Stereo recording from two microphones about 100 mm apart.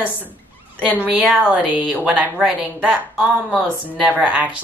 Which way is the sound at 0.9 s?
15° right (ahead or behind).